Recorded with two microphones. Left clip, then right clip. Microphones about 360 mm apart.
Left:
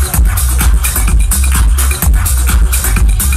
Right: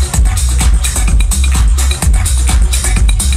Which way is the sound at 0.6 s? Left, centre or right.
Centre.